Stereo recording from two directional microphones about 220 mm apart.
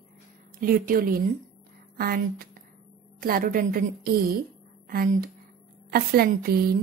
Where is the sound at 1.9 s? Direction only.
40° right (ahead or behind).